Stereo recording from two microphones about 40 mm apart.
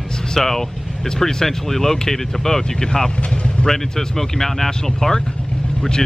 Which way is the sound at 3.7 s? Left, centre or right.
Centre.